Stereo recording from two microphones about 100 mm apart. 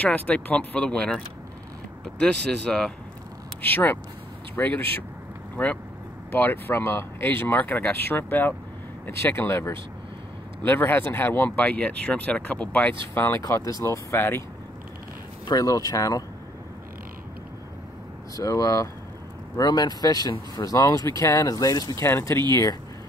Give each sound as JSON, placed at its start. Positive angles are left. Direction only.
{"t": 0.0, "sound": "speech", "side_deg": 15}
{"t": 2.7, "sound": "speech", "side_deg": 5}
{"t": 3.6, "sound": "speech", "side_deg": 20}
{"t": 6.3, "sound": "speech", "side_deg": 20}
{"t": 13.4, "sound": "speech", "side_deg": 35}
{"t": 15.4, "sound": "speech", "side_deg": 35}
{"t": 18.3, "sound": "speech", "side_deg": 35}
{"t": 22.0, "sound": "speech", "side_deg": 25}
{"t": 22.5, "sound": "speech", "side_deg": 35}